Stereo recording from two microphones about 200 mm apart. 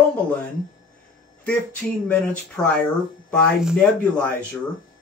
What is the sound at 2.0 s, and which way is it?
Speech, 5° left (ahead or behind).